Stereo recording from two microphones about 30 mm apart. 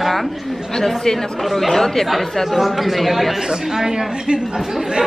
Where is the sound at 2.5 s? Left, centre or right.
Centre.